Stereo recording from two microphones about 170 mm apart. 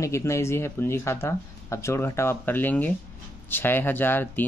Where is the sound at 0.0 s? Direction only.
15° left (ahead or behind).